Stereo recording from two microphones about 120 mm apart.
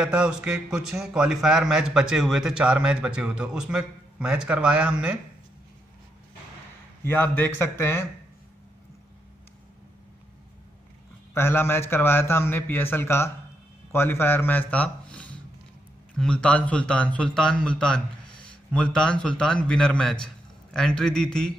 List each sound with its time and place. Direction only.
0.0 s a man's voice: 5° right (ahead or behind)
7.1 s a man's voice: 15° left (ahead or behind)
11.3 s a man's voice: 20° left (ahead or behind); by 21.5 s 5° left (ahead or behind)